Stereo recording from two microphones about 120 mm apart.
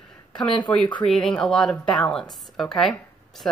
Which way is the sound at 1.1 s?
5° left (ahead or behind).